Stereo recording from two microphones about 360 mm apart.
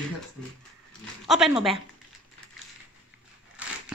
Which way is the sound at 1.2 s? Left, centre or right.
Centre.